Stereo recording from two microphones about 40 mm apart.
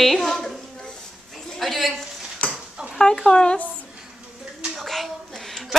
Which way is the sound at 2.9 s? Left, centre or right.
Centre.